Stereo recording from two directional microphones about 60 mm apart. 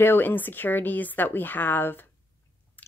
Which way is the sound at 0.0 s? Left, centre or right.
Left.